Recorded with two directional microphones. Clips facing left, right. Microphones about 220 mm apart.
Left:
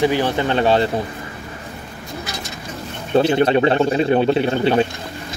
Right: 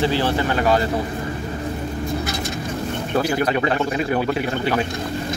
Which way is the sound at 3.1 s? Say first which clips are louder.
Left 6 dB; 25° left (ahead or behind).